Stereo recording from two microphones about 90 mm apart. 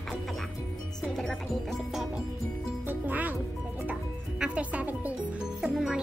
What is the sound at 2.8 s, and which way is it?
Music, 20° right (ahead or behind).